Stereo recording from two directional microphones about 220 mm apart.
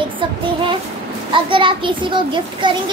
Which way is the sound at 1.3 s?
20° right (ahead or behind).